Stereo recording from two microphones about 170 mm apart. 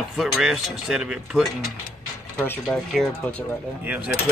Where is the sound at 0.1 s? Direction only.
Centre (ahead or behind).